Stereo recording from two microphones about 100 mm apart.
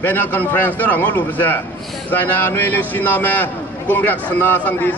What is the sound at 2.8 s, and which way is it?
A man's voice, 20° left (ahead or behind).